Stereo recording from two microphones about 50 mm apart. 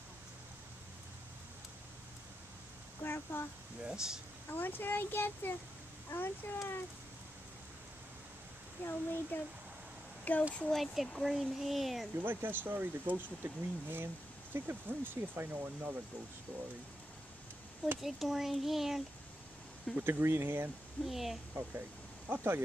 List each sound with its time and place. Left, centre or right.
3.0 s a sound: left
3.8 s speech: centre
4.5 s speech: left
8.8 s speech: left
10.3 s speech: left
10.7 s a child's voice: centre
12.3 s speech: right
18.0 s a child's voice: centre
20.0 s speech: right
21.0 s a child's voice: centre
22.3 s speech: right